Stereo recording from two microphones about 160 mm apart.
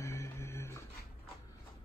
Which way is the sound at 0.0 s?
15° left (ahead or behind).